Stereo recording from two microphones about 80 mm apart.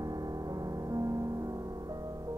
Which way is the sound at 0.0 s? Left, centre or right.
Right.